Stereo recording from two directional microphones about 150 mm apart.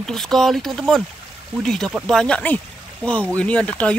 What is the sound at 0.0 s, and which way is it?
Speech, centre (ahead or behind).